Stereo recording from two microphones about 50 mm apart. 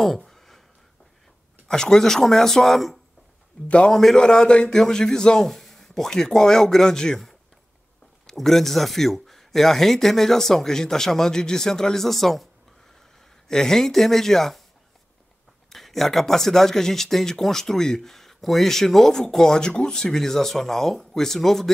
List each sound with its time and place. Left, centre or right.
0.0 s a sound: centre
1.7 s speech: centre
3.6 s a man's voice: left
3.9 s speech: centre
8.4 s speech: centre
15.7 s speech: centre